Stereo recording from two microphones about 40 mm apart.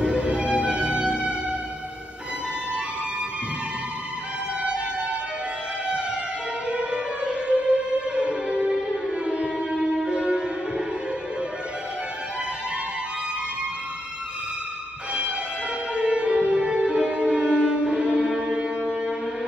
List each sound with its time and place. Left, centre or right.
0.0 s music: right
6.7 s music: right
15.9 s music: right